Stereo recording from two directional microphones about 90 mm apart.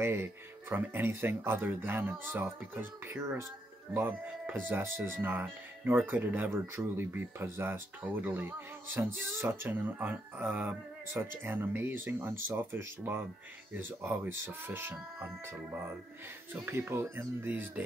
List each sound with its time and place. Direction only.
0.0 s speech: 25° right (ahead or behind)